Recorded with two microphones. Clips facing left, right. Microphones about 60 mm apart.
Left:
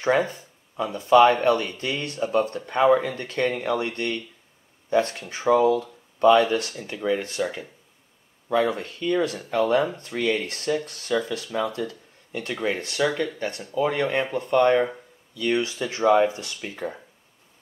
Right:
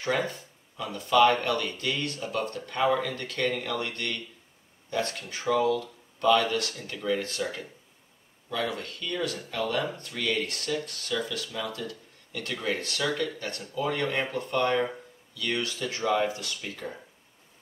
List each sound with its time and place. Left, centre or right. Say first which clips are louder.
0.0 s speech: left 6 dB; left